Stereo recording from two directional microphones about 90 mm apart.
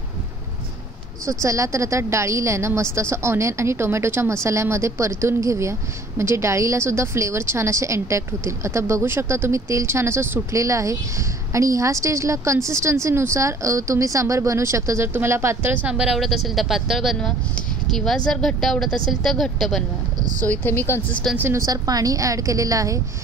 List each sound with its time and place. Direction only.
1.4 s a woman's voice: 35° right (ahead or behind)
15.9 s speech: 5° right (ahead or behind)
20.4 s speech: 25° left (ahead or behind)
21.2 s speech: 5° left (ahead or behind)
21.5 s a woman's voice: 40° right (ahead or behind)